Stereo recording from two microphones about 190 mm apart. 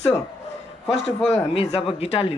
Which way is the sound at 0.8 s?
35° left (ahead or behind).